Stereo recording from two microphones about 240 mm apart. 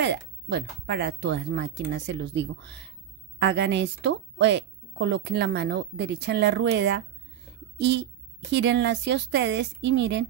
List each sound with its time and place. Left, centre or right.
0.0 s a woman's voice: right